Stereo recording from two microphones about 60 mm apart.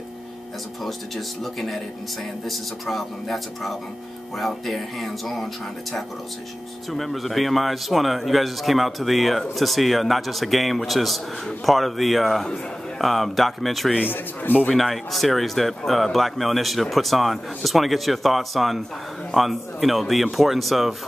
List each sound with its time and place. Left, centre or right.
0.8 s a man's voice: centre
14.0 s speech: left
14.7 s a man's voice: centre